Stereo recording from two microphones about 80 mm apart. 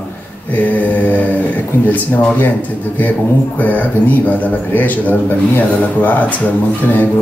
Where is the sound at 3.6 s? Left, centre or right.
Left.